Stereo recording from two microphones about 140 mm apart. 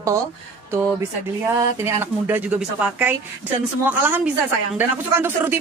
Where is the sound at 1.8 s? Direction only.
15° right (ahead or behind).